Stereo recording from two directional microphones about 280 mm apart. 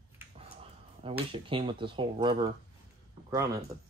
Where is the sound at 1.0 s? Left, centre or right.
Centre.